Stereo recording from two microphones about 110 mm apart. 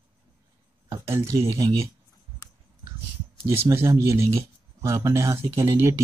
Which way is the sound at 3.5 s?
25° right (ahead or behind).